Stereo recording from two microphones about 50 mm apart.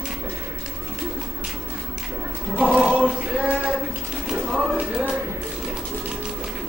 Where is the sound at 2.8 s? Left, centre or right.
Centre.